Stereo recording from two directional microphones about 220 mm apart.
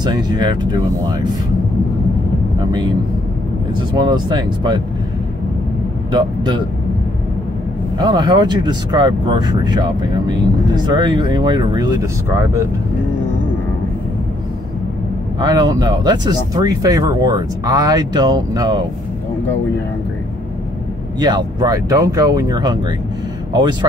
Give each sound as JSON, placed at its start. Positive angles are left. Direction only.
{"t": 0.0, "sound": "speech", "side_deg": -20}
{"t": 3.9, "sound": "speech", "side_deg": -20}
{"t": 6.1, "sound": "speech", "side_deg": -20}
{"t": 8.0, "sound": "speech", "side_deg": -20}
{"t": 15.4, "sound": "speech", "side_deg": -20}
{"t": 21.2, "sound": "speech", "side_deg": -20}